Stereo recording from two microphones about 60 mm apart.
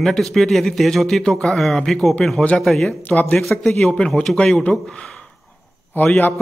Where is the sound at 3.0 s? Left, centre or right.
Left.